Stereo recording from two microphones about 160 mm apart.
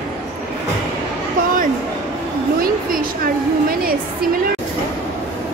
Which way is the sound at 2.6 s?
65° right (ahead or behind).